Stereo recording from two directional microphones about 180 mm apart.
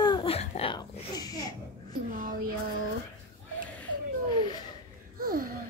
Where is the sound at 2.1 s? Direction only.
50° right (ahead or behind).